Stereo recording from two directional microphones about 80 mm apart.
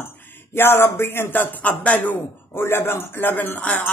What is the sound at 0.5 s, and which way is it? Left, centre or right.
Speech, left.